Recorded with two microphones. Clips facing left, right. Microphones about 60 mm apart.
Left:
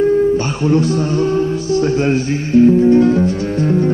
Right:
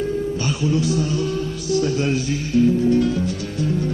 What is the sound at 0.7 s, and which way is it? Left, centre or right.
Mantra, left.